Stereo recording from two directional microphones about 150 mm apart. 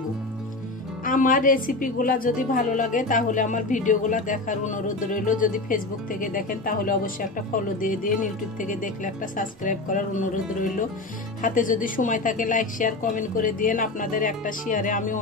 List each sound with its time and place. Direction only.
1.0 s a woman's voice: 65° left (ahead or behind)